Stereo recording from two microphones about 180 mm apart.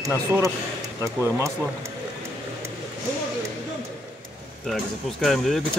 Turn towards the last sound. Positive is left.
turn(degrees=0)  # may be behind; listen again after turning